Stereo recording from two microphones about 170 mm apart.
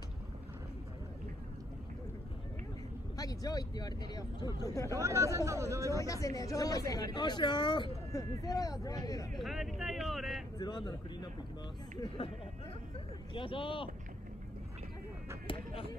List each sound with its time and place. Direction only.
3.2 s speech: 20° left (ahead or behind)
4.9 s speech: 15° right (ahead or behind)
5.9 s speech: 20° left (ahead or behind)
9.4 s a sound: centre (ahead or behind)
10.6 s speech: 25° left (ahead or behind)
13.3 s speech: 30° left (ahead or behind)
15.4 s a sound: 30° left (ahead or behind)